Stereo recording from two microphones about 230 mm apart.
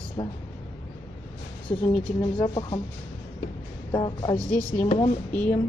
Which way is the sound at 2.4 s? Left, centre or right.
Centre.